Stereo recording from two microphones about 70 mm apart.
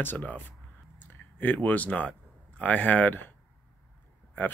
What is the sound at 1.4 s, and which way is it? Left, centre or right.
Speech, left.